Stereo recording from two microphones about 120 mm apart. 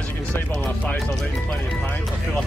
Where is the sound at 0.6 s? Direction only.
15° left (ahead or behind).